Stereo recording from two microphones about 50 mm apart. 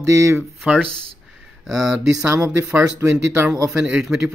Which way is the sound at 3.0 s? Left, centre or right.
Right.